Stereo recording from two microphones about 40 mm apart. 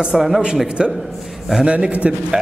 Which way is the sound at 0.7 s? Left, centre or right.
Right.